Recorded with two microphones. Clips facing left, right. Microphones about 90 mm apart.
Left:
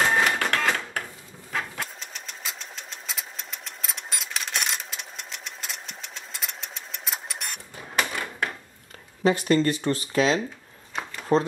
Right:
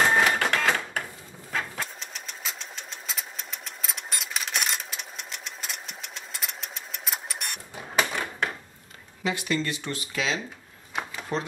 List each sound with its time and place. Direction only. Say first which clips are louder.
0.0 s printer: right 1 dB; centre (ahead or behind)
1.5 s sewing machine: even; centre (ahead or behind)
9.2 s speech: left 7 dB; 40° left (ahead or behind)